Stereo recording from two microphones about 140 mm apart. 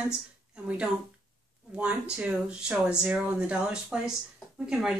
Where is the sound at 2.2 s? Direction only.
5° right (ahead or behind).